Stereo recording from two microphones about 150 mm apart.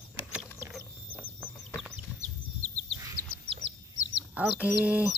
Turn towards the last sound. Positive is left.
turn(degrees=-10)  # may be behind; listen again after turning